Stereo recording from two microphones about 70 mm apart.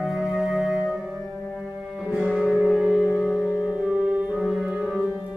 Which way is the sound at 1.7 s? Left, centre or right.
Centre.